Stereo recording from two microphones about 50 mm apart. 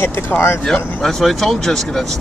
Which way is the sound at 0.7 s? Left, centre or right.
Centre.